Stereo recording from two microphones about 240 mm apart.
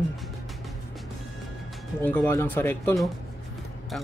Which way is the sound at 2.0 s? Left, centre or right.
Centre.